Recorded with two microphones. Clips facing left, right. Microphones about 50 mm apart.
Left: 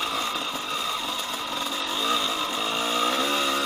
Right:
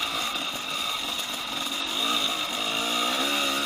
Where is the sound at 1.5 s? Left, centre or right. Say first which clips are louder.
Left 2 dB; centre.